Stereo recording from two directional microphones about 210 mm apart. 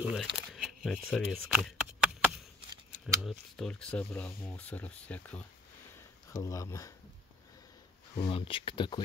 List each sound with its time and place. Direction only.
0.0 s speech: centre (ahead or behind)
1.5 s a sound: 5° right (ahead or behind)
3.2 s speech: centre (ahead or behind)
8.2 s speech: 25° left (ahead or behind)